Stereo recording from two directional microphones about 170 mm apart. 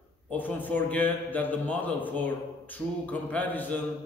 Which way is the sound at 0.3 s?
10° left (ahead or behind).